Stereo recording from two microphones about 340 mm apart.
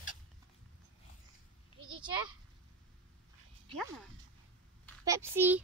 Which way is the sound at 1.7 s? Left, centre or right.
Centre.